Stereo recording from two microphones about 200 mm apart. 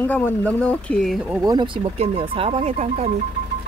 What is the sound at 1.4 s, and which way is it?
Speech, 25° right (ahead or behind).